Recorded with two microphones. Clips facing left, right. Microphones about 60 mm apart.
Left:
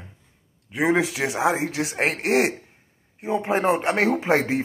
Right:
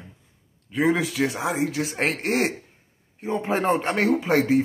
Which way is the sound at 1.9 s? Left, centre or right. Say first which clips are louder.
Left 3 dB; centre.